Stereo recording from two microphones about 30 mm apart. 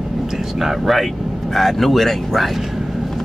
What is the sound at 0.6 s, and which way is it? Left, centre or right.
Speech, centre.